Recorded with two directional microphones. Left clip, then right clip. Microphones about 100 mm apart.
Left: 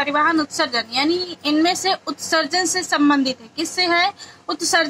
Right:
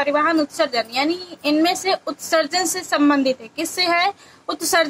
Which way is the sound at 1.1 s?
30° left (ahead or behind).